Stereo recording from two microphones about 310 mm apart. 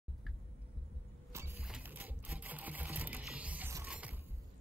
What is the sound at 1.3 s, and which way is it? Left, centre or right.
Sewing machine, centre.